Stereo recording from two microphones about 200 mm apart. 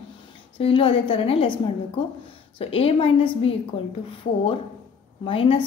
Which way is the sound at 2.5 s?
30° left (ahead or behind).